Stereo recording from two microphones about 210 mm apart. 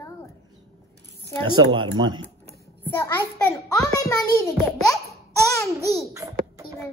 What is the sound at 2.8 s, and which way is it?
Speech, 10° left (ahead or behind).